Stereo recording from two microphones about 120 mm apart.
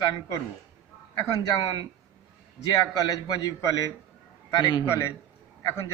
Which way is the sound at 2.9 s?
30° left (ahead or behind).